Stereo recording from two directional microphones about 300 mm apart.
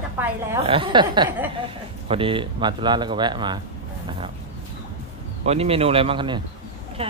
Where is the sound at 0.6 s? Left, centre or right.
Centre.